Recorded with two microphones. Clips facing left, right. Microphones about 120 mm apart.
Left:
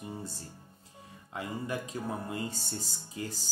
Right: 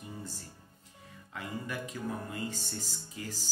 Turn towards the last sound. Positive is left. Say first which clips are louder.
# left 3 dB
turn(degrees=30)  # may be behind; listen again after turning